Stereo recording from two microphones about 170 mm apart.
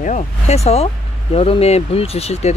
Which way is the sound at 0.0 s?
40° left (ahead or behind).